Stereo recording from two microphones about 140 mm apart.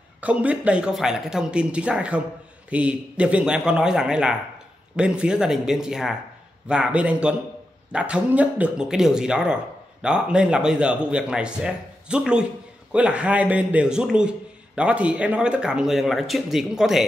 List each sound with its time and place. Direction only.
0.2 s speech: 10° right (ahead or behind)